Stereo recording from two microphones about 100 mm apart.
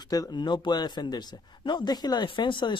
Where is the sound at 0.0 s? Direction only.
40° left (ahead or behind).